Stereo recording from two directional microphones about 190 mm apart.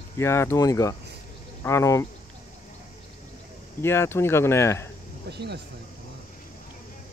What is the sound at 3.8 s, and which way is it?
Speech, 15° left (ahead or behind).